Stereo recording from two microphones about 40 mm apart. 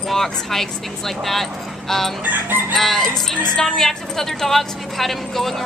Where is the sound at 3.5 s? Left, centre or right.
Centre.